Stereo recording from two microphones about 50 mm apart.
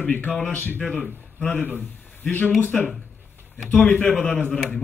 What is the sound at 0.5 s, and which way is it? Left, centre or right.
Speech, left.